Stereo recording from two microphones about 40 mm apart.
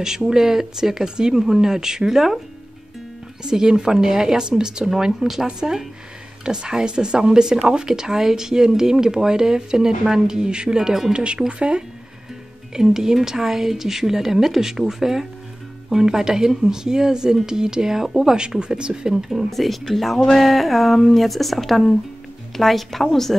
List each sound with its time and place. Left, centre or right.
0.0 s speech: centre
1.4 s speech: centre
3.4 s speech: centre
19.5 s speech: centre